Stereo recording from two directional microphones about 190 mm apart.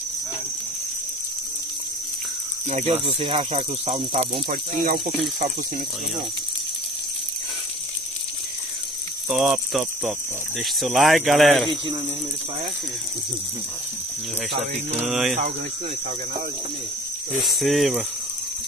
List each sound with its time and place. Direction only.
2.7 s speech: 35° right (ahead or behind)
9.3 s speech: centre (ahead or behind)
11.6 s speech: 25° right (ahead or behind)
14.5 s speech: 35° right (ahead or behind)
15.0 s speech: centre (ahead or behind)
17.4 s speech: centre (ahead or behind)